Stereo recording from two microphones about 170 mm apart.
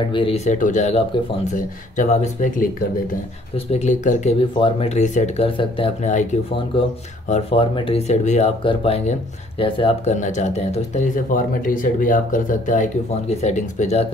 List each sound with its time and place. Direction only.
0.1 s speech: 35° left (ahead or behind)
7.2 s speech: 40° left (ahead or behind)